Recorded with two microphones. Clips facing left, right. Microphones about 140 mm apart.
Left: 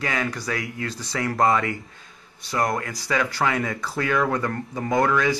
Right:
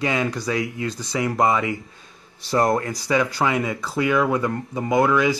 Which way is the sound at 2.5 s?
30° right (ahead or behind).